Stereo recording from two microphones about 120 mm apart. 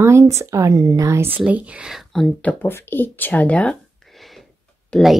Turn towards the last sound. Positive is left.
turn(degrees=10)  # may be behind; listen again after turning